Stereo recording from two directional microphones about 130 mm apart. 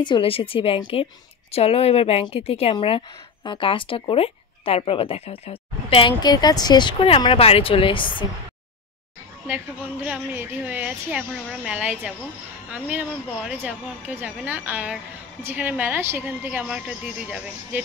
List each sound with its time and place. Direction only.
0.0 s speech: 40° left (ahead or behind)
9.5 s a woman's voice: 10° right (ahead or behind)